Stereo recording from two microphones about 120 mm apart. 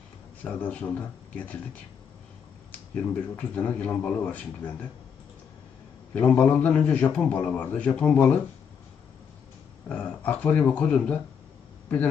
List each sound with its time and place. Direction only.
0.4 s a man's voice: 10° left (ahead or behind)
2.7 s a man's voice: 10° left (ahead or behind)
6.1 s a man's voice: 15° left (ahead or behind)
9.8 s a man's voice: 10° left (ahead or behind)